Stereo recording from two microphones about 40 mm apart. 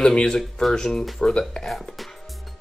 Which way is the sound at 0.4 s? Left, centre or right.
Centre.